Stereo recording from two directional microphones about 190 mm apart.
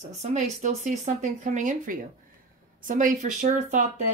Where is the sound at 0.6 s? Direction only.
40° right (ahead or behind).